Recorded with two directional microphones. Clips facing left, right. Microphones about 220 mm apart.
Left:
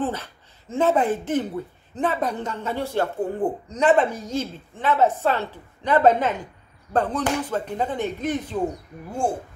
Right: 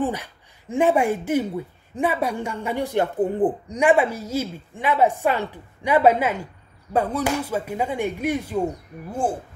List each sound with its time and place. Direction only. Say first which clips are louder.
0.0 s speech: right 2 dB; 15° right (ahead or behind)